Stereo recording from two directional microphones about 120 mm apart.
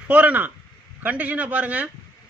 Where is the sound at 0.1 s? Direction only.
15° right (ahead or behind).